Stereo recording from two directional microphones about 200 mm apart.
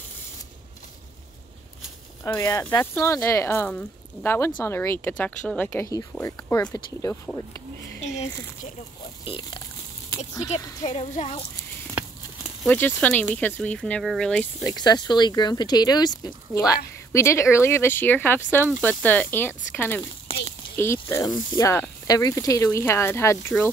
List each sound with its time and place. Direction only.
2.2 s speech: 15° left (ahead or behind)
8.0 s speech: 35° left (ahead or behind)
9.2 s speech: 25° left (ahead or behind)
10.5 s speech: 35° left (ahead or behind)
12.6 s speech: 10° left (ahead or behind)
14.6 s speech: 20° left (ahead or behind)
20.2 s a sound: 30° left (ahead or behind)
20.7 s speech: 10° left (ahead or behind)